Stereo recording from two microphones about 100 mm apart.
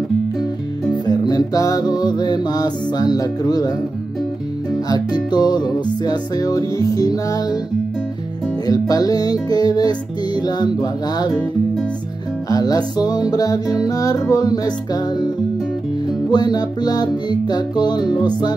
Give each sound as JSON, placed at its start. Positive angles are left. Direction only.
{"t": 1.0, "sound": "music", "side_deg": 45}
{"t": 4.8, "sound": "music", "side_deg": 40}
{"t": 8.6, "sound": "music", "side_deg": 40}
{"t": 12.4, "sound": "music", "side_deg": 40}